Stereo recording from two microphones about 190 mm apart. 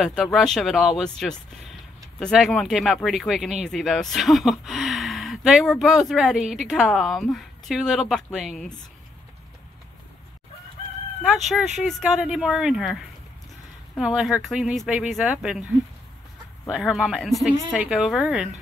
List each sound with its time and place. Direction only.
0.0 s speech: centre (ahead or behind)
11.4 s speech: centre (ahead or behind)
13.9 s speech: centre (ahead or behind)